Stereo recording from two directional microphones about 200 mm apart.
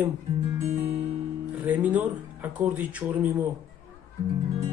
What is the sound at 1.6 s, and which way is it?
Speech, 10° right (ahead or behind).